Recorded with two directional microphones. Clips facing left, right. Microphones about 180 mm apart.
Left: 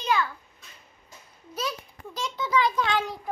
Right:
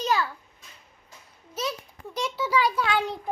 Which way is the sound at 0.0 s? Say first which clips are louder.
Even; 35° right (ahead or behind).